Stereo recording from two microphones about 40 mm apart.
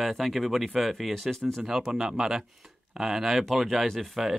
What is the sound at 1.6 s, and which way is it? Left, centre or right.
Speech, centre.